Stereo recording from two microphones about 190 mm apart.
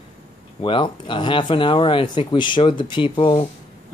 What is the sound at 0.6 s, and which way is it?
Speech, 25° left (ahead or behind).